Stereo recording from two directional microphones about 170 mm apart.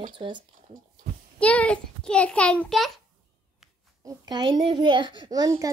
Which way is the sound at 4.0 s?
20° right (ahead or behind).